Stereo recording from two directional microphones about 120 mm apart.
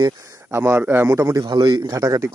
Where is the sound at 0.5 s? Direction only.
20° right (ahead or behind).